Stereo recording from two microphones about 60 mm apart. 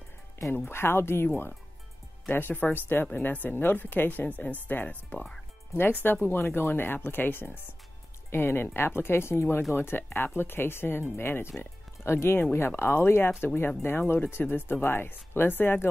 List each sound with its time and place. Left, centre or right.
0.5 s speech: left